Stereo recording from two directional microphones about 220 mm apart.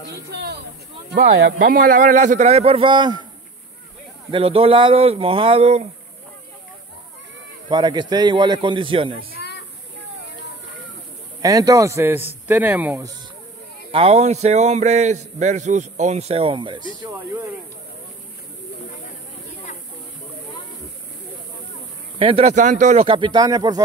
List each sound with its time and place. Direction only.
0.1 s speech: 50° right (ahead or behind)
1.7 s a man's voice: 40° right (ahead or behind); by 3.3 s 20° right (ahead or behind)
4.3 s a man's voice: 25° right (ahead or behind)
7.7 s a man's voice: 20° right (ahead or behind)
11.4 s a man's voice: 15° right (ahead or behind)
13.9 s a man's voice: 30° right (ahead or behind)
22.2 s a man's voice: 25° right (ahead or behind)